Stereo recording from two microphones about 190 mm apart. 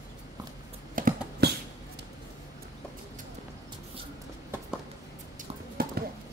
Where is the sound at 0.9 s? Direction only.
45° right (ahead or behind).